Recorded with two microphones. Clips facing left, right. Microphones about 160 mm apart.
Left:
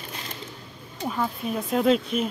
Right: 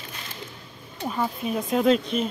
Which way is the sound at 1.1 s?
Centre (ahead or behind).